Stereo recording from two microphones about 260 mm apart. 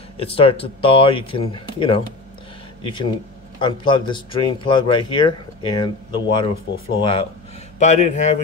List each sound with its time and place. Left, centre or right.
0.2 s speech: left